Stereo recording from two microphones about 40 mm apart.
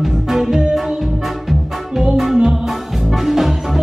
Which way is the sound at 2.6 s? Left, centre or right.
Centre.